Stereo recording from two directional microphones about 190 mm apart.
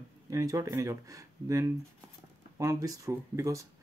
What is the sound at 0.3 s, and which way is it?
Speech, 15° right (ahead or behind).